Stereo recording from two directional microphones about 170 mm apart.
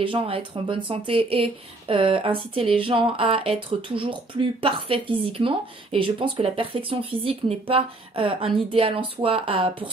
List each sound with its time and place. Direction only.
0.0 s speech: 30° right (ahead or behind)